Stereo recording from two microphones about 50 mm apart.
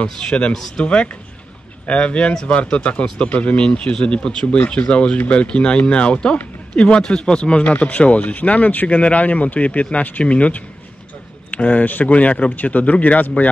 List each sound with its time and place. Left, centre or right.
0.0 s speech: centre